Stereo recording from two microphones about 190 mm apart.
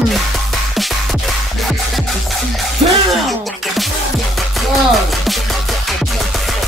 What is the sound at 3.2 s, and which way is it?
Music, centre (ahead or behind).